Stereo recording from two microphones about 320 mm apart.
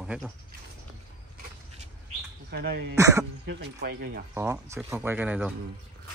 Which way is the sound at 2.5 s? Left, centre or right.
Right.